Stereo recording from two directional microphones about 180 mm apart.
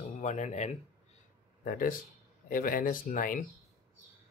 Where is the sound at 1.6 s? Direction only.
50° left (ahead or behind).